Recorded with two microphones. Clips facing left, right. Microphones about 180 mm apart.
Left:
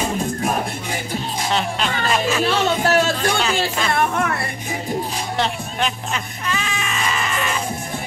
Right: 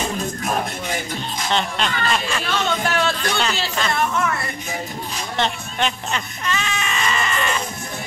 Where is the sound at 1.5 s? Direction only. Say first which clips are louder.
Even; 5° left (ahead or behind).